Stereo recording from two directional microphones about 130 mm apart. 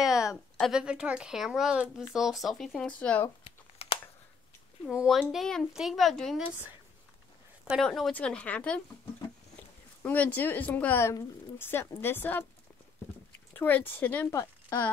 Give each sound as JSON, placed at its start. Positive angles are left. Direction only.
{"t": 0.0, "sound": "a sound", "side_deg": 0}
{"t": 0.6, "sound": "speech", "side_deg": -5}
{"t": 3.4, "sound": "crumpling", "side_deg": 45}
{"t": 4.8, "sound": "speech", "side_deg": 10}
{"t": 7.8, "sound": "speech", "side_deg": 5}
{"t": 10.0, "sound": "speech", "side_deg": 10}
{"t": 13.5, "sound": "speech", "side_deg": 15}